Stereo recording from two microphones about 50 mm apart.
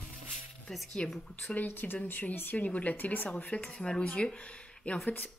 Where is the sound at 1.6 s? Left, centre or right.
Left; by 4.3 s centre.